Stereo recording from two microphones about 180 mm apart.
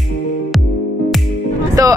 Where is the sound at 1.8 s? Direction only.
20° right (ahead or behind).